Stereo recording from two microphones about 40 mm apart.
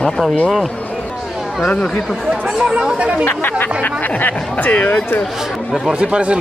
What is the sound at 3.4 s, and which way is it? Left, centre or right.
Speech, left.